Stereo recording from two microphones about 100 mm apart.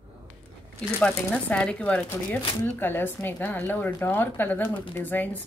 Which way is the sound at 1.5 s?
10° left (ahead or behind).